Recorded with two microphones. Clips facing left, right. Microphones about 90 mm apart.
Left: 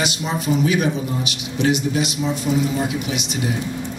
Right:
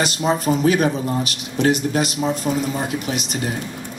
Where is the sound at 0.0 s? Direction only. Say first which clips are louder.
Right 4 dB; 40° right (ahead or behind).